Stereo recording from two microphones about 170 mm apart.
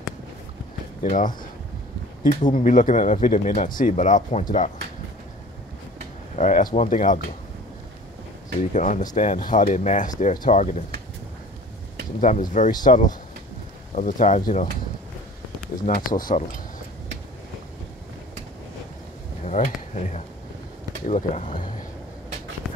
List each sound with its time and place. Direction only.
1.0 s speech: 50° left (ahead or behind)
2.4 s speech: 50° left (ahead or behind)
6.3 s speech: 45° left (ahead or behind)
8.7 s speech: 45° left (ahead or behind)
12.2 s speech: 45° left (ahead or behind)
15.8 s speech: 55° left (ahead or behind)
19.4 s insect: 45° left (ahead or behind)
21.1 s speech: 45° left (ahead or behind)